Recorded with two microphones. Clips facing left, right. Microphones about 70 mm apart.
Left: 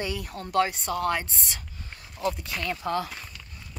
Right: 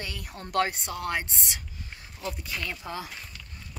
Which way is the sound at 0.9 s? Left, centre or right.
Right.